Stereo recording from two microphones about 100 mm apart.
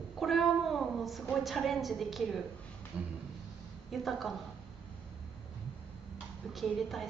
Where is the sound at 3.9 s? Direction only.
Centre (ahead or behind).